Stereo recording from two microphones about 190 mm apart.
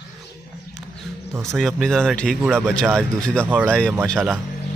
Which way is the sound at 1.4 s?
Centre (ahead or behind).